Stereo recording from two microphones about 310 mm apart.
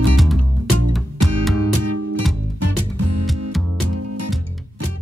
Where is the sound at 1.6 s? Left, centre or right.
Right.